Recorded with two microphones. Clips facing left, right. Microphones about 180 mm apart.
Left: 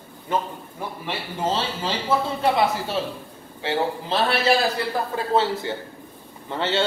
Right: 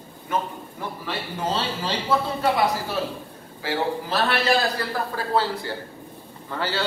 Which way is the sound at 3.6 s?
25° left (ahead or behind).